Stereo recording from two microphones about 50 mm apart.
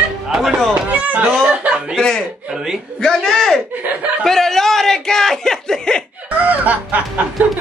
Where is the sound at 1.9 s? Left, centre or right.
Centre.